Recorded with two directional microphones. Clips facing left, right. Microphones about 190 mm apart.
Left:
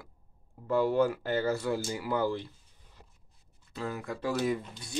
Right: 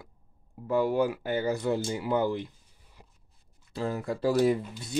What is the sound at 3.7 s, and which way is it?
Speech, 30° right (ahead or behind).